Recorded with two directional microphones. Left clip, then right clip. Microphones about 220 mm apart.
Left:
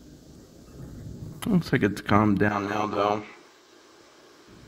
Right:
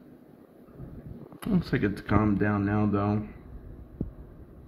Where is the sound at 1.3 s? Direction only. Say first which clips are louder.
Left 4 dB; 30° left (ahead or behind).